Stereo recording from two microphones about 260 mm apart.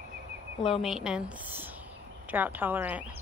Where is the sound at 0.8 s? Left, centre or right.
Centre.